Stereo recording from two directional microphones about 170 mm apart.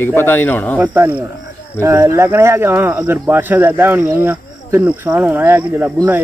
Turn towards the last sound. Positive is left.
turn(degrees=-15)  # may be behind; listen again after turning